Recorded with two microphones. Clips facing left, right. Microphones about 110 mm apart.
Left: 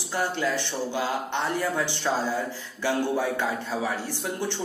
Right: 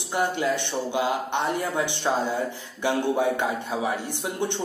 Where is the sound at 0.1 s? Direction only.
20° right (ahead or behind).